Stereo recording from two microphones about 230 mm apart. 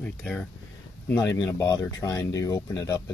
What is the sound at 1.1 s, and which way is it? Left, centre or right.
Speech, centre.